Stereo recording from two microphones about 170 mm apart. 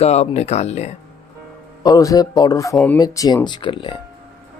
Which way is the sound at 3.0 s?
20° left (ahead or behind).